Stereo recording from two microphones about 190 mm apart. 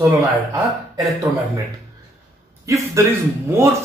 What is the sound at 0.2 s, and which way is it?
Speech, 20° right (ahead or behind).